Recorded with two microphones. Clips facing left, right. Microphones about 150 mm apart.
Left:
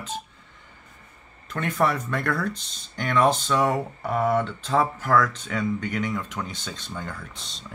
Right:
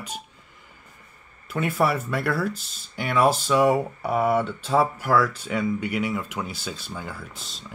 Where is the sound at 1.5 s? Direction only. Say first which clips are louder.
Right 1 dB; 10° right (ahead or behind).